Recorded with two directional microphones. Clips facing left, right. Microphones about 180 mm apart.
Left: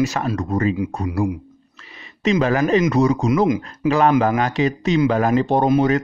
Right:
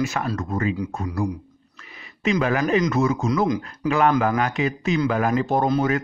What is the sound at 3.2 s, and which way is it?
Speech, 20° left (ahead or behind).